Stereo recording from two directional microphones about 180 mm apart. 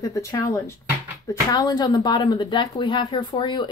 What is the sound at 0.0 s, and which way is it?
A woman's voice, 20° left (ahead or behind).